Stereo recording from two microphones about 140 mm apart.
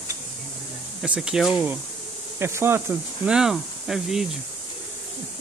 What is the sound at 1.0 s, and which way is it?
Speech, 5° right (ahead or behind).